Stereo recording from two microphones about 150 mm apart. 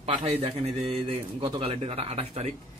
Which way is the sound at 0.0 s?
40° right (ahead or behind).